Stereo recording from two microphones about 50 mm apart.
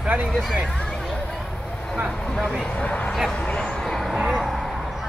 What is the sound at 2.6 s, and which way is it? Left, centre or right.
Speech, left.